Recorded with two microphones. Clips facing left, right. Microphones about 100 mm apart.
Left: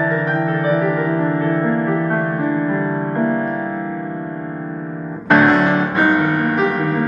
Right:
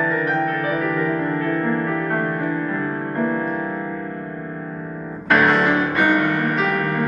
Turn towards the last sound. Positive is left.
turn(degrees=20)  # may be behind; listen again after turning